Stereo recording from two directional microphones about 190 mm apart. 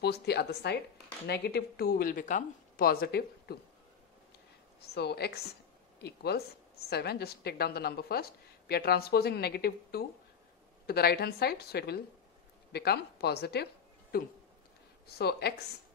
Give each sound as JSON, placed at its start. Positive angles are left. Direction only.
{"t": 0.0, "sound": "a woman's voice", "side_deg": 60}
{"t": 4.8, "sound": "a woman's voice", "side_deg": 60}